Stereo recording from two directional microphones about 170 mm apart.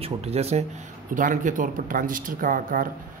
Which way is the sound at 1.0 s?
50° right (ahead or behind).